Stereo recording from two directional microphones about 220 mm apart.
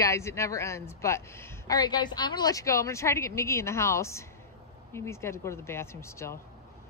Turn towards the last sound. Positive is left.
turn(degrees=10)  # may be behind; listen again after turning